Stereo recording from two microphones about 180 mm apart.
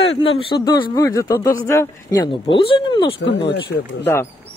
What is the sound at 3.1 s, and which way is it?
Speech, 75° left (ahead or behind).